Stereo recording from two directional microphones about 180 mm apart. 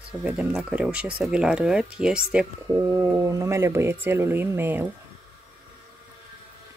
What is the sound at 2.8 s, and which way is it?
Speech, 15° right (ahead or behind).